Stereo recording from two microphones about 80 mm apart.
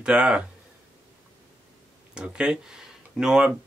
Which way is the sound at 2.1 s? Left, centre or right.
Centre.